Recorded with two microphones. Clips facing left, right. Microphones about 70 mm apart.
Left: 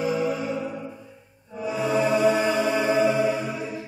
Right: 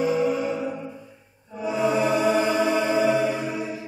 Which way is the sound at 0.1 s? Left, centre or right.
Centre.